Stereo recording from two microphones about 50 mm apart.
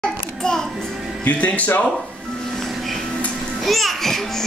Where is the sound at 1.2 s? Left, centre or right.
Left.